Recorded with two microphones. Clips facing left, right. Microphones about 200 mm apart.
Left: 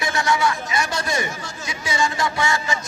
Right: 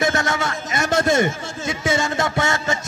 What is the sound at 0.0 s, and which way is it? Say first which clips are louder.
A man's voice: even; 50° right (ahead or behind).